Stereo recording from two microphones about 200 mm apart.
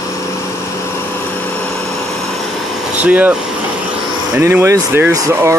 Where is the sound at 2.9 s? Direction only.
5° right (ahead or behind).